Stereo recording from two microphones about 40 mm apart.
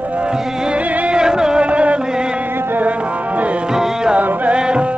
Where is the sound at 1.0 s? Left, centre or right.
Centre.